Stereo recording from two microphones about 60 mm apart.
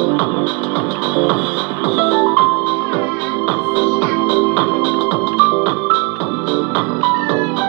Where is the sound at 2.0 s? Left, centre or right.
Left.